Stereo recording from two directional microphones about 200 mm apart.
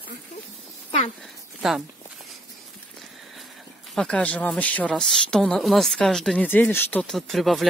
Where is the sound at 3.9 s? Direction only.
5° left (ahead or behind).